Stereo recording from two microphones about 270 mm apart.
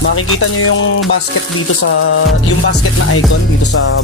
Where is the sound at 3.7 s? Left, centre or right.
Left.